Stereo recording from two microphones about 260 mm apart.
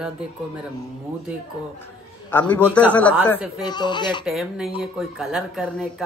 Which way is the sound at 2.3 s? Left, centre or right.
Centre.